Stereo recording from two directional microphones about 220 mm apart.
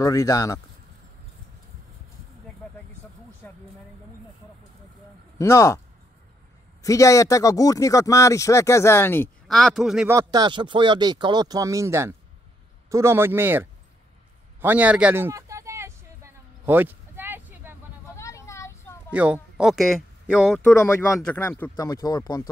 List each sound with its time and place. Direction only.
0.0 s speech: 15° left (ahead or behind)
3.4 s speech: 10° left (ahead or behind)
5.4 s speech: 15° left (ahead or behind)
6.8 s speech: 15° left (ahead or behind); by 10.1 s centre (ahead or behind)
10.1 s speech: 20° right (ahead or behind)
14.6 s a sound: 10° right (ahead or behind)
18.1 s a sound: 15° left (ahead or behind)
19.1 s speech: 5° right (ahead or behind)
20.7 s speech: 15° left (ahead or behind)